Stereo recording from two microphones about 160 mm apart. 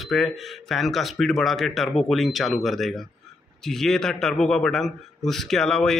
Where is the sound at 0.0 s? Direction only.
Centre (ahead or behind).